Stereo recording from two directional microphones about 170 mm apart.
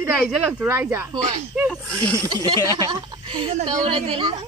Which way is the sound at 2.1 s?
20° right (ahead or behind).